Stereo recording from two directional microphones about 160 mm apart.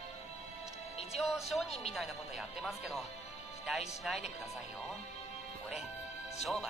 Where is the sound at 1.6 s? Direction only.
40° left (ahead or behind).